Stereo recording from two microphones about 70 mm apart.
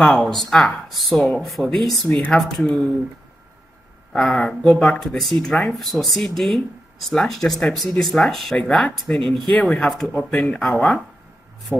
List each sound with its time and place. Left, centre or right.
0.0 s speech: centre
2.0 s speech: left
2.3 s speech: centre
4.1 s speech: centre
8.5 s speech: centre
11.7 s speech: right